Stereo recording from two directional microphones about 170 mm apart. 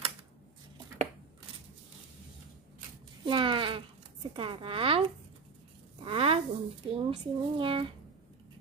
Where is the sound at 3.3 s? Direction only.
30° right (ahead or behind).